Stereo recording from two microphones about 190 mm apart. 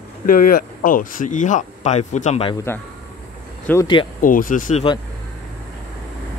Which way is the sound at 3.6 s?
10° left (ahead or behind).